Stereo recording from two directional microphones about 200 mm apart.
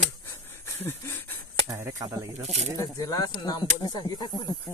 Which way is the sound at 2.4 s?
35° right (ahead or behind).